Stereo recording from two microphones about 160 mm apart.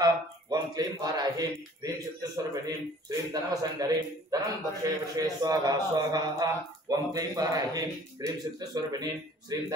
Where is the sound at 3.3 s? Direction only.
25° right (ahead or behind).